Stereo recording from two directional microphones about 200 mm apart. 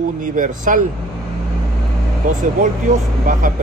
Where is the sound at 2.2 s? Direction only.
40° right (ahead or behind).